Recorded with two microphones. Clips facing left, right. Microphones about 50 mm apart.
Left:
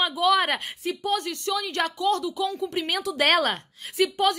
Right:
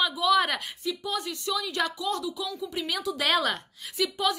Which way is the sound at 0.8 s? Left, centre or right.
Left.